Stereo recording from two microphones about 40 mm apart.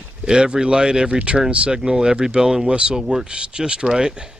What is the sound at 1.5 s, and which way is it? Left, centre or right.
Speech, right.